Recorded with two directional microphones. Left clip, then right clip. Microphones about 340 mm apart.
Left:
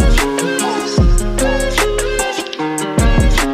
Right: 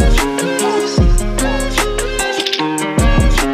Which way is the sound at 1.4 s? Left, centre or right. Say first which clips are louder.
Left 2 dB; centre.